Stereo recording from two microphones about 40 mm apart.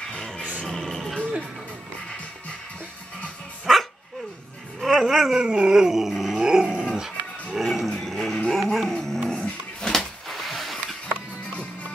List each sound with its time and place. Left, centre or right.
0.4 s music: centre
4.7 s a sound: centre
5.3 s dog: right
6.3 s dog: centre
7.5 s roaring cats: centre
8.0 s a sound: centre
8.5 s music: centre
9.3 s dog: centre
9.9 s a sound: centre